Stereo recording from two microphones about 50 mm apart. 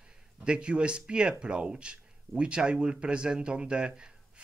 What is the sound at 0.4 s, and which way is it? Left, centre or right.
Speech, centre.